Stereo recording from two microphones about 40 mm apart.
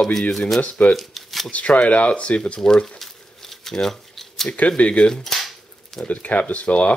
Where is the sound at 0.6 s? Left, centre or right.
Left.